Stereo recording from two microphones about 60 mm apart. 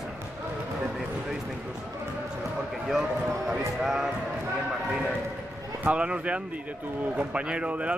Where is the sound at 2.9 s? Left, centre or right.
Centre.